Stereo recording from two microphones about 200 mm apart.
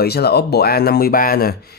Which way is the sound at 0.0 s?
55° left (ahead or behind).